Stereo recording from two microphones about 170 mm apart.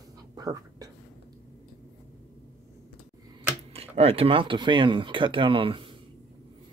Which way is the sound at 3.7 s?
35° right (ahead or behind).